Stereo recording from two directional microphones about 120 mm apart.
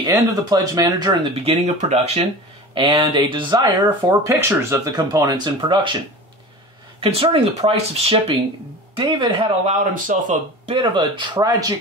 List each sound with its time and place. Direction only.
0.0 s speech: 30° right (ahead or behind)
1.3 s speech: 55° right (ahead or behind)
2.7 s speech: 45° right (ahead or behind)
4.3 s speech: 20° right (ahead or behind); by 5.9 s 40° right (ahead or behind)
7.0 s speech: 50° right (ahead or behind)
8.9 s speech: 40° right (ahead or behind)
9.7 s speech: 90° right
10.7 s speech: 40° right (ahead or behind)